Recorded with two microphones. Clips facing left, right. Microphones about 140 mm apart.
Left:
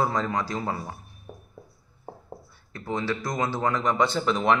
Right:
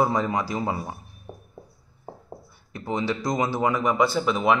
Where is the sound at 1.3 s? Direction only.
15° right (ahead or behind).